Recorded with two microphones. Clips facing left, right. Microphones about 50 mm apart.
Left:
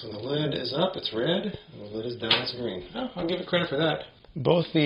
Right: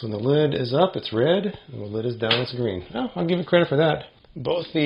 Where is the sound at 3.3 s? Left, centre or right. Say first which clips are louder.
Right 9 dB; centre.